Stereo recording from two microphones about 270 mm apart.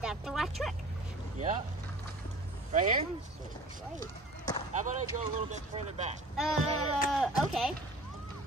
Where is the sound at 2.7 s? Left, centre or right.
Right.